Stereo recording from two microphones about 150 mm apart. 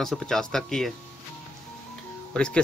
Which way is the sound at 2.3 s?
5° left (ahead or behind).